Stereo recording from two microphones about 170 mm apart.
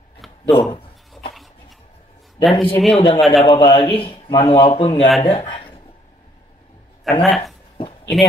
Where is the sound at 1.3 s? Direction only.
Centre (ahead or behind).